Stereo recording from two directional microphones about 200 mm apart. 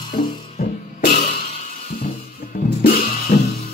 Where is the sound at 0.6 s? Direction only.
45° left (ahead or behind).